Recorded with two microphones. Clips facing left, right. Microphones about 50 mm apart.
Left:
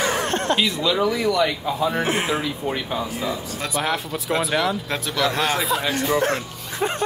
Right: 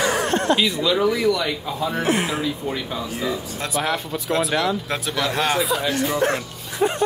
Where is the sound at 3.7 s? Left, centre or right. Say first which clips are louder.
Right 1 dB; centre.